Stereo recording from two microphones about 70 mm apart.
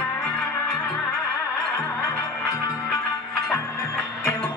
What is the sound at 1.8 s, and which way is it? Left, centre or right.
Music, left.